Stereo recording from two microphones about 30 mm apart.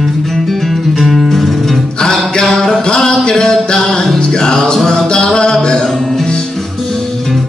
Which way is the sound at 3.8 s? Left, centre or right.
Centre.